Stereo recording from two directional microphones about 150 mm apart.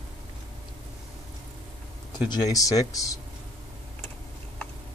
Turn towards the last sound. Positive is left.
turn(degrees=20)  # may be behind; listen again after turning